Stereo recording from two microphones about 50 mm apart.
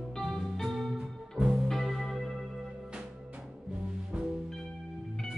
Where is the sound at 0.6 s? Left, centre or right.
Centre.